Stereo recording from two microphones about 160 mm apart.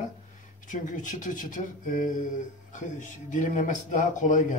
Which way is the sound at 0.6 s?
55° left (ahead or behind).